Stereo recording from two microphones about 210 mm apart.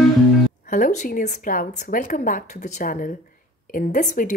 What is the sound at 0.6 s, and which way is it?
A woman's voice, 40° left (ahead or behind).